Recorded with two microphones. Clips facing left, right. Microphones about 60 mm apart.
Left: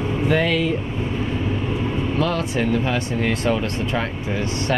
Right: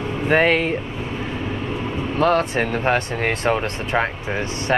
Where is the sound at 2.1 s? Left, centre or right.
Right.